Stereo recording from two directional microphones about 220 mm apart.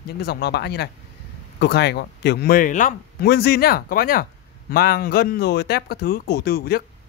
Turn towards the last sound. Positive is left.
turn(degrees=45)  # may be behind; listen again after turning